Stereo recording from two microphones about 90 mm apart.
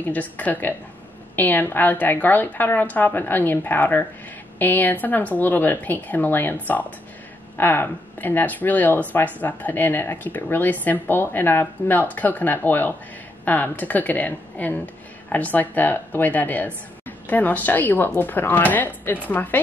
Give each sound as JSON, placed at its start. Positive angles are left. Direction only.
{"t": 0.0, "sound": "speech", "side_deg": 20}